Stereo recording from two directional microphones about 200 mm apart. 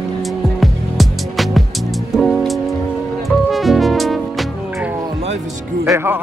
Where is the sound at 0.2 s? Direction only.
Centre (ahead or behind).